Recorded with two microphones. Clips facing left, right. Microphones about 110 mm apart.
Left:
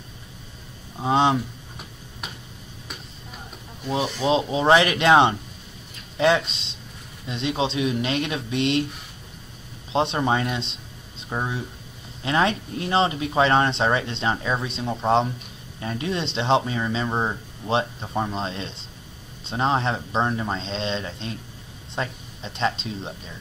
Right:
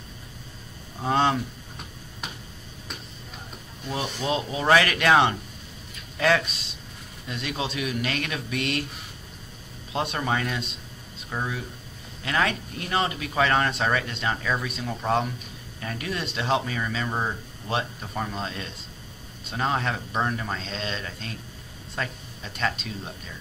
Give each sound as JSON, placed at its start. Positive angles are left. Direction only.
{"t": 0.9, "sound": "speech", "side_deg": 15}
{"t": 3.9, "sound": "speech", "side_deg": 20}
{"t": 9.9, "sound": "speech", "side_deg": 25}